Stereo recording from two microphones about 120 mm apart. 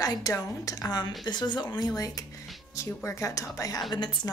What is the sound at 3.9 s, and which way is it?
Speech, 40° left (ahead or behind).